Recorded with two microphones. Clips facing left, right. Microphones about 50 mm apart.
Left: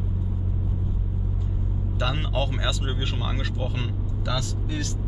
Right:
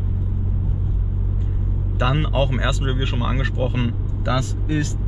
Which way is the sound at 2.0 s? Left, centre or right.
Right.